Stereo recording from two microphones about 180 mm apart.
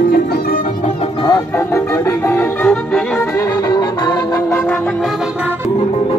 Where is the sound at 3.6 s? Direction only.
20° left (ahead or behind).